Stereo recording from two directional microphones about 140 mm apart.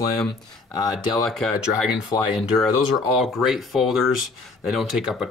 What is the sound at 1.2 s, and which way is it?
Speech, centre (ahead or behind).